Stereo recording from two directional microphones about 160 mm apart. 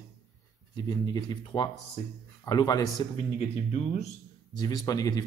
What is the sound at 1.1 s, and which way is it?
Speech, 30° left (ahead or behind).